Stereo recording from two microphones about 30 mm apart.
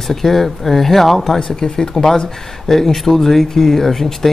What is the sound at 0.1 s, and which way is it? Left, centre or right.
Speech, centre.